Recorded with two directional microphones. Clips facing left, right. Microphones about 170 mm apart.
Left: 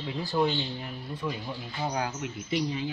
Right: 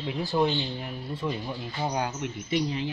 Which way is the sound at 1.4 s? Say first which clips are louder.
Right 2 dB; 10° right (ahead or behind).